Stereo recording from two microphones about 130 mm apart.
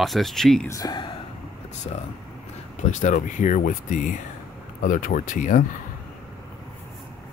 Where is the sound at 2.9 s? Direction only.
75° left (ahead or behind).